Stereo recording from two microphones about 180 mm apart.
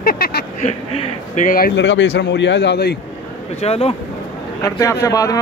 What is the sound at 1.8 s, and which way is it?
A man's voice, 80° left.